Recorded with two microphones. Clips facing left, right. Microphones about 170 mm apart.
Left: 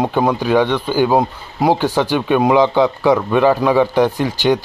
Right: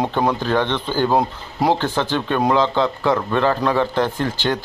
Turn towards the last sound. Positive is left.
turn(degrees=15)  # may be behind; listen again after turning